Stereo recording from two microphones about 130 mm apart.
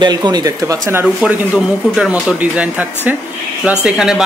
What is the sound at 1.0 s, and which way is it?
Speech, 5° right (ahead or behind).